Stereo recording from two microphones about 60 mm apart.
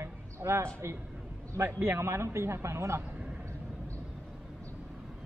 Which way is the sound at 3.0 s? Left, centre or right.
Centre.